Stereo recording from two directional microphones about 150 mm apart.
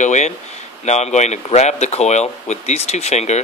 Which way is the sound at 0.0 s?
50° left (ahead or behind).